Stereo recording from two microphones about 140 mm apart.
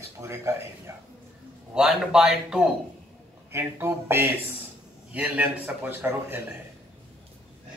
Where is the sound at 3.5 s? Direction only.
20° right (ahead or behind).